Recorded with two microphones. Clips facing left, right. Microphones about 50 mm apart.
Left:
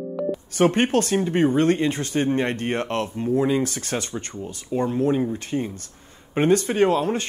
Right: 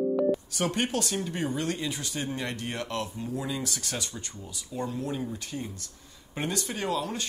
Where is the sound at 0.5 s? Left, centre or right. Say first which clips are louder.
Left 10 dB; left.